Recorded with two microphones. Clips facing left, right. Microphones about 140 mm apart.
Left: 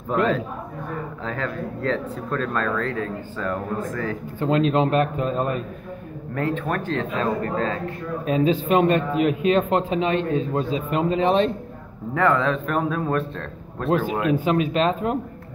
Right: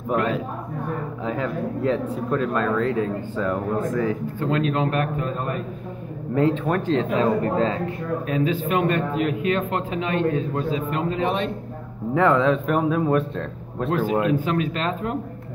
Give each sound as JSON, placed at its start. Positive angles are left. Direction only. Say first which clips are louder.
{"t": 1.2, "sound": "speech", "louder": "right 3 dB", "side_deg": -15}
{"t": 4.4, "sound": "a man's voice", "louder": "left 5 dB", "side_deg": 20}
{"t": 6.3, "sound": "a man's voice", "louder": "right 4 dB", "side_deg": -20}
{"t": 8.3, "sound": "a man's voice", "louder": "left 4 dB", "side_deg": 25}
{"t": 12.1, "sound": "speech", "louder": "right 2 dB", "side_deg": -20}
{"t": 13.8, "sound": "a man's voice", "louder": "even", "side_deg": 20}